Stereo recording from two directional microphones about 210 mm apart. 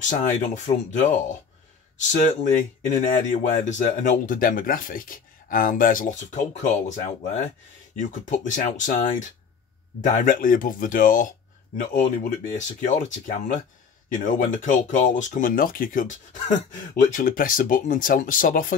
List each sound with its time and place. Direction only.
0.0 s speech: 35° left (ahead or behind)